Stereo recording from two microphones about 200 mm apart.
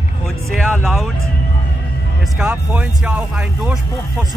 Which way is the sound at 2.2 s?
Centre (ahead or behind).